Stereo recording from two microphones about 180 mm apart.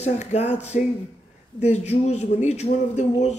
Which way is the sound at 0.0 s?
40° left (ahead or behind).